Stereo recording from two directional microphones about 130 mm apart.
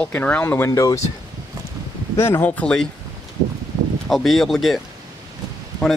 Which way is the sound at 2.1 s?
20° left (ahead or behind).